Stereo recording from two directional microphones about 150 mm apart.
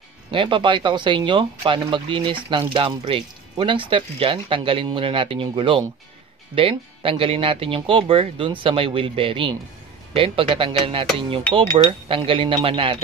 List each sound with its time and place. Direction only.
0.3 s speech: 35° right (ahead or behind)